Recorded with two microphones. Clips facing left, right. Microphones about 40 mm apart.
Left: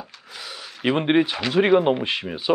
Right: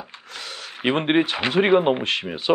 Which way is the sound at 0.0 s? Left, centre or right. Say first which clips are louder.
Right 1 dB; right.